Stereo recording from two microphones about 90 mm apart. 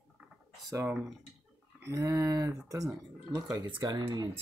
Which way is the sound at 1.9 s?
35° right (ahead or behind).